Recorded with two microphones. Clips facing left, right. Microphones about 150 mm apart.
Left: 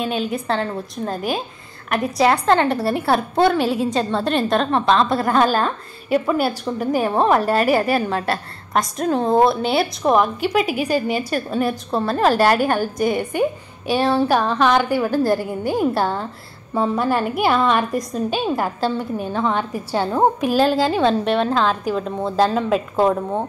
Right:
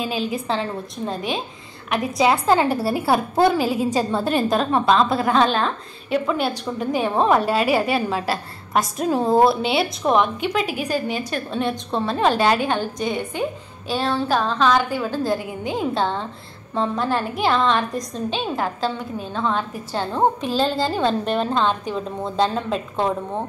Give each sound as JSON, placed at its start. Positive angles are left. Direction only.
{"t": 0.0, "sound": "a woman's voice", "side_deg": 0}